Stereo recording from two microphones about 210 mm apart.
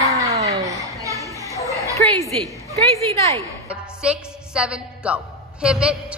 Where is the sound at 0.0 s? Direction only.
15° right (ahead or behind).